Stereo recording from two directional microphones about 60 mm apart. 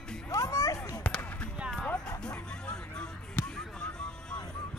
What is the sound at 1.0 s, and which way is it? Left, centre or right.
Basketball bounce, left.